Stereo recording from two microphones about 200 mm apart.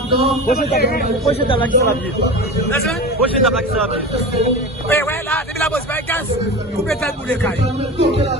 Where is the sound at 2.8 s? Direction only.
Centre (ahead or behind).